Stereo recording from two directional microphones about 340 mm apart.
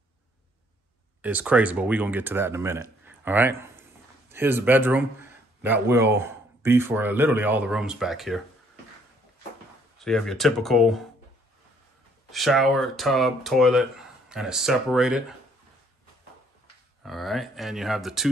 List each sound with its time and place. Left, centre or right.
1.2 s speech: centre
9.9 s speech: centre
12.3 s speech: centre
17.0 s speech: centre